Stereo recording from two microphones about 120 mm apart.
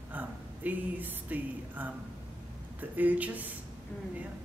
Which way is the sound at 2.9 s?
15° right (ahead or behind).